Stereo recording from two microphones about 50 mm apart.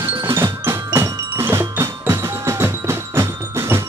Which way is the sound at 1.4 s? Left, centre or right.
Right.